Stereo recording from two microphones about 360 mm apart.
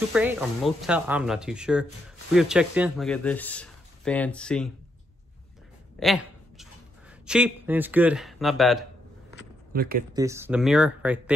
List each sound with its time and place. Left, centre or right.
0.1 s speech: centre
5.9 s a sound: centre
9.7 s speech: right
10.1 s speech: centre